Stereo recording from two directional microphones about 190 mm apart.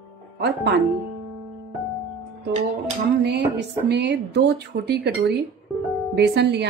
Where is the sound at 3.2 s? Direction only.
60° right (ahead or behind).